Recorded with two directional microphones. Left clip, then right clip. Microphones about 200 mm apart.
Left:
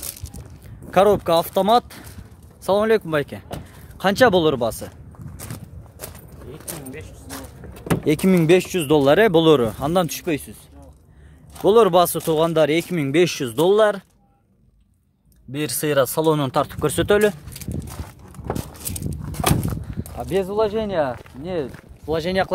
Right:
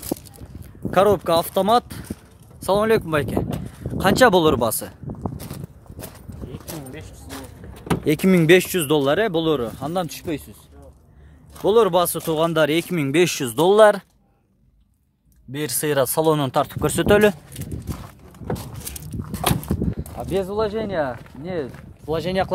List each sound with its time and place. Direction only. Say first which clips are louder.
0.8 s speech: left 1 dB; centre (ahead or behind)
8.0 s speech: even; centre (ahead or behind)
9.0 s speech: left 5 dB; 20° left (ahead or behind)
11.6 s speech: left 2 dB; 20° left (ahead or behind); by 14.0 s 15° right (ahead or behind)
15.5 s speech: left 2 dB; centre (ahead or behind)
19.4 s a sound: left 1 dB; 15° left (ahead or behind)
20.2 s speech: left 2 dB; 10° left (ahead or behind)